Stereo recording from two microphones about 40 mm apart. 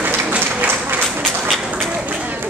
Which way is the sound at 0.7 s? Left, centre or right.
Right.